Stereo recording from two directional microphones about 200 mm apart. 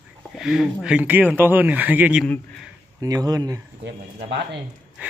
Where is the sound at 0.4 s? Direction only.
Centre (ahead or behind).